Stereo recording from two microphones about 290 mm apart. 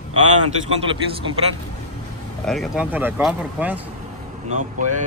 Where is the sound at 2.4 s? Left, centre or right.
Centre.